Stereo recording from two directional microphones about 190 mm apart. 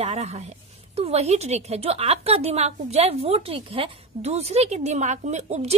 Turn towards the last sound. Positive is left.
turn(degrees=-35)  # may be behind; listen again after turning